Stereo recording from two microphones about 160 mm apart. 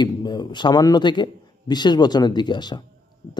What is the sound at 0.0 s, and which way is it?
A man's voice, 25° left (ahead or behind).